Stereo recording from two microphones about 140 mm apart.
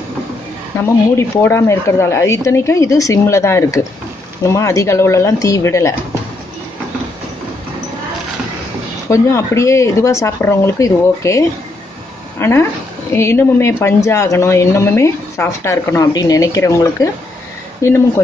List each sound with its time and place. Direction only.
0.7 s speech: 20° left (ahead or behind)
9.1 s speech: 20° left (ahead or behind)